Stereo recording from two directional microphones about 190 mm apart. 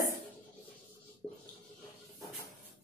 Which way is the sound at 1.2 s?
10° left (ahead or behind).